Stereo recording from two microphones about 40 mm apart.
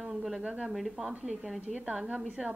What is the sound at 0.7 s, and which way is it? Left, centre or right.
Speech, centre.